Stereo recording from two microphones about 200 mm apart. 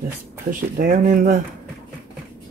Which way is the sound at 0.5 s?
40° right (ahead or behind).